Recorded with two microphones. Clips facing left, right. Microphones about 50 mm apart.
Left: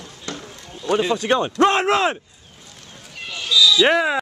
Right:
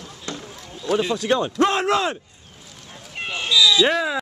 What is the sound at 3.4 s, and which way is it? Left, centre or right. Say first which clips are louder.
Speech: left 1 dB; right.